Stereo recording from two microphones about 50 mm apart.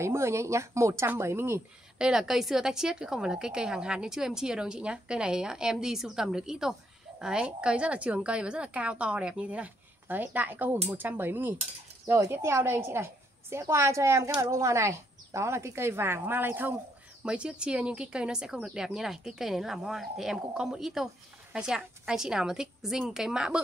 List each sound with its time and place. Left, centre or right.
0.0 s speech: right
1.2 s a woman's voice: right
2.0 s a woman's voice: centre
7.4 s a woman's voice: right
10.0 s a woman's voice: right
12.1 s a woman's voice: right
17.2 s a woman's voice: right